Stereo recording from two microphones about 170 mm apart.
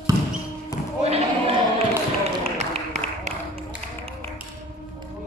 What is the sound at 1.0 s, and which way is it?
Basketball bounce, 35° right (ahead or behind).